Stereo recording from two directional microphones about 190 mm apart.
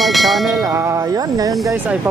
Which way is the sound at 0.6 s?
15° right (ahead or behind).